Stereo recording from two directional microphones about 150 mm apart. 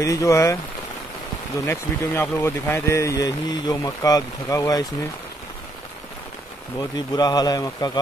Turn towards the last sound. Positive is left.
turn(degrees=25)  # may be behind; listen again after turning